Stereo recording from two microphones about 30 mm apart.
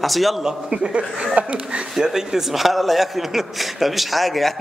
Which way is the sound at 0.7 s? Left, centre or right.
Right.